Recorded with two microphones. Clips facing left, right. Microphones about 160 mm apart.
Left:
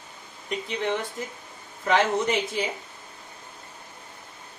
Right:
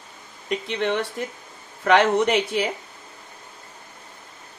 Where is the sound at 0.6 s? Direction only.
70° right (ahead or behind).